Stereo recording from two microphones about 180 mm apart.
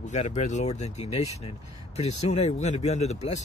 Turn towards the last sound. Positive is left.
turn(degrees=40)  # may be behind; listen again after turning